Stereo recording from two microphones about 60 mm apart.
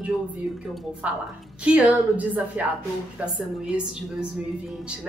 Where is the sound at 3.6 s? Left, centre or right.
Centre.